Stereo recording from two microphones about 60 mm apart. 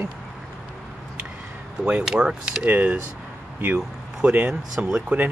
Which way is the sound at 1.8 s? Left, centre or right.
Centre.